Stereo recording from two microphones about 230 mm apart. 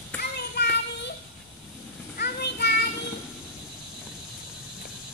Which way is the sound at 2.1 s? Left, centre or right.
Left.